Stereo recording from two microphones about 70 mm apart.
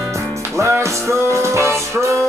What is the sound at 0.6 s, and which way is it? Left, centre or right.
Music, right.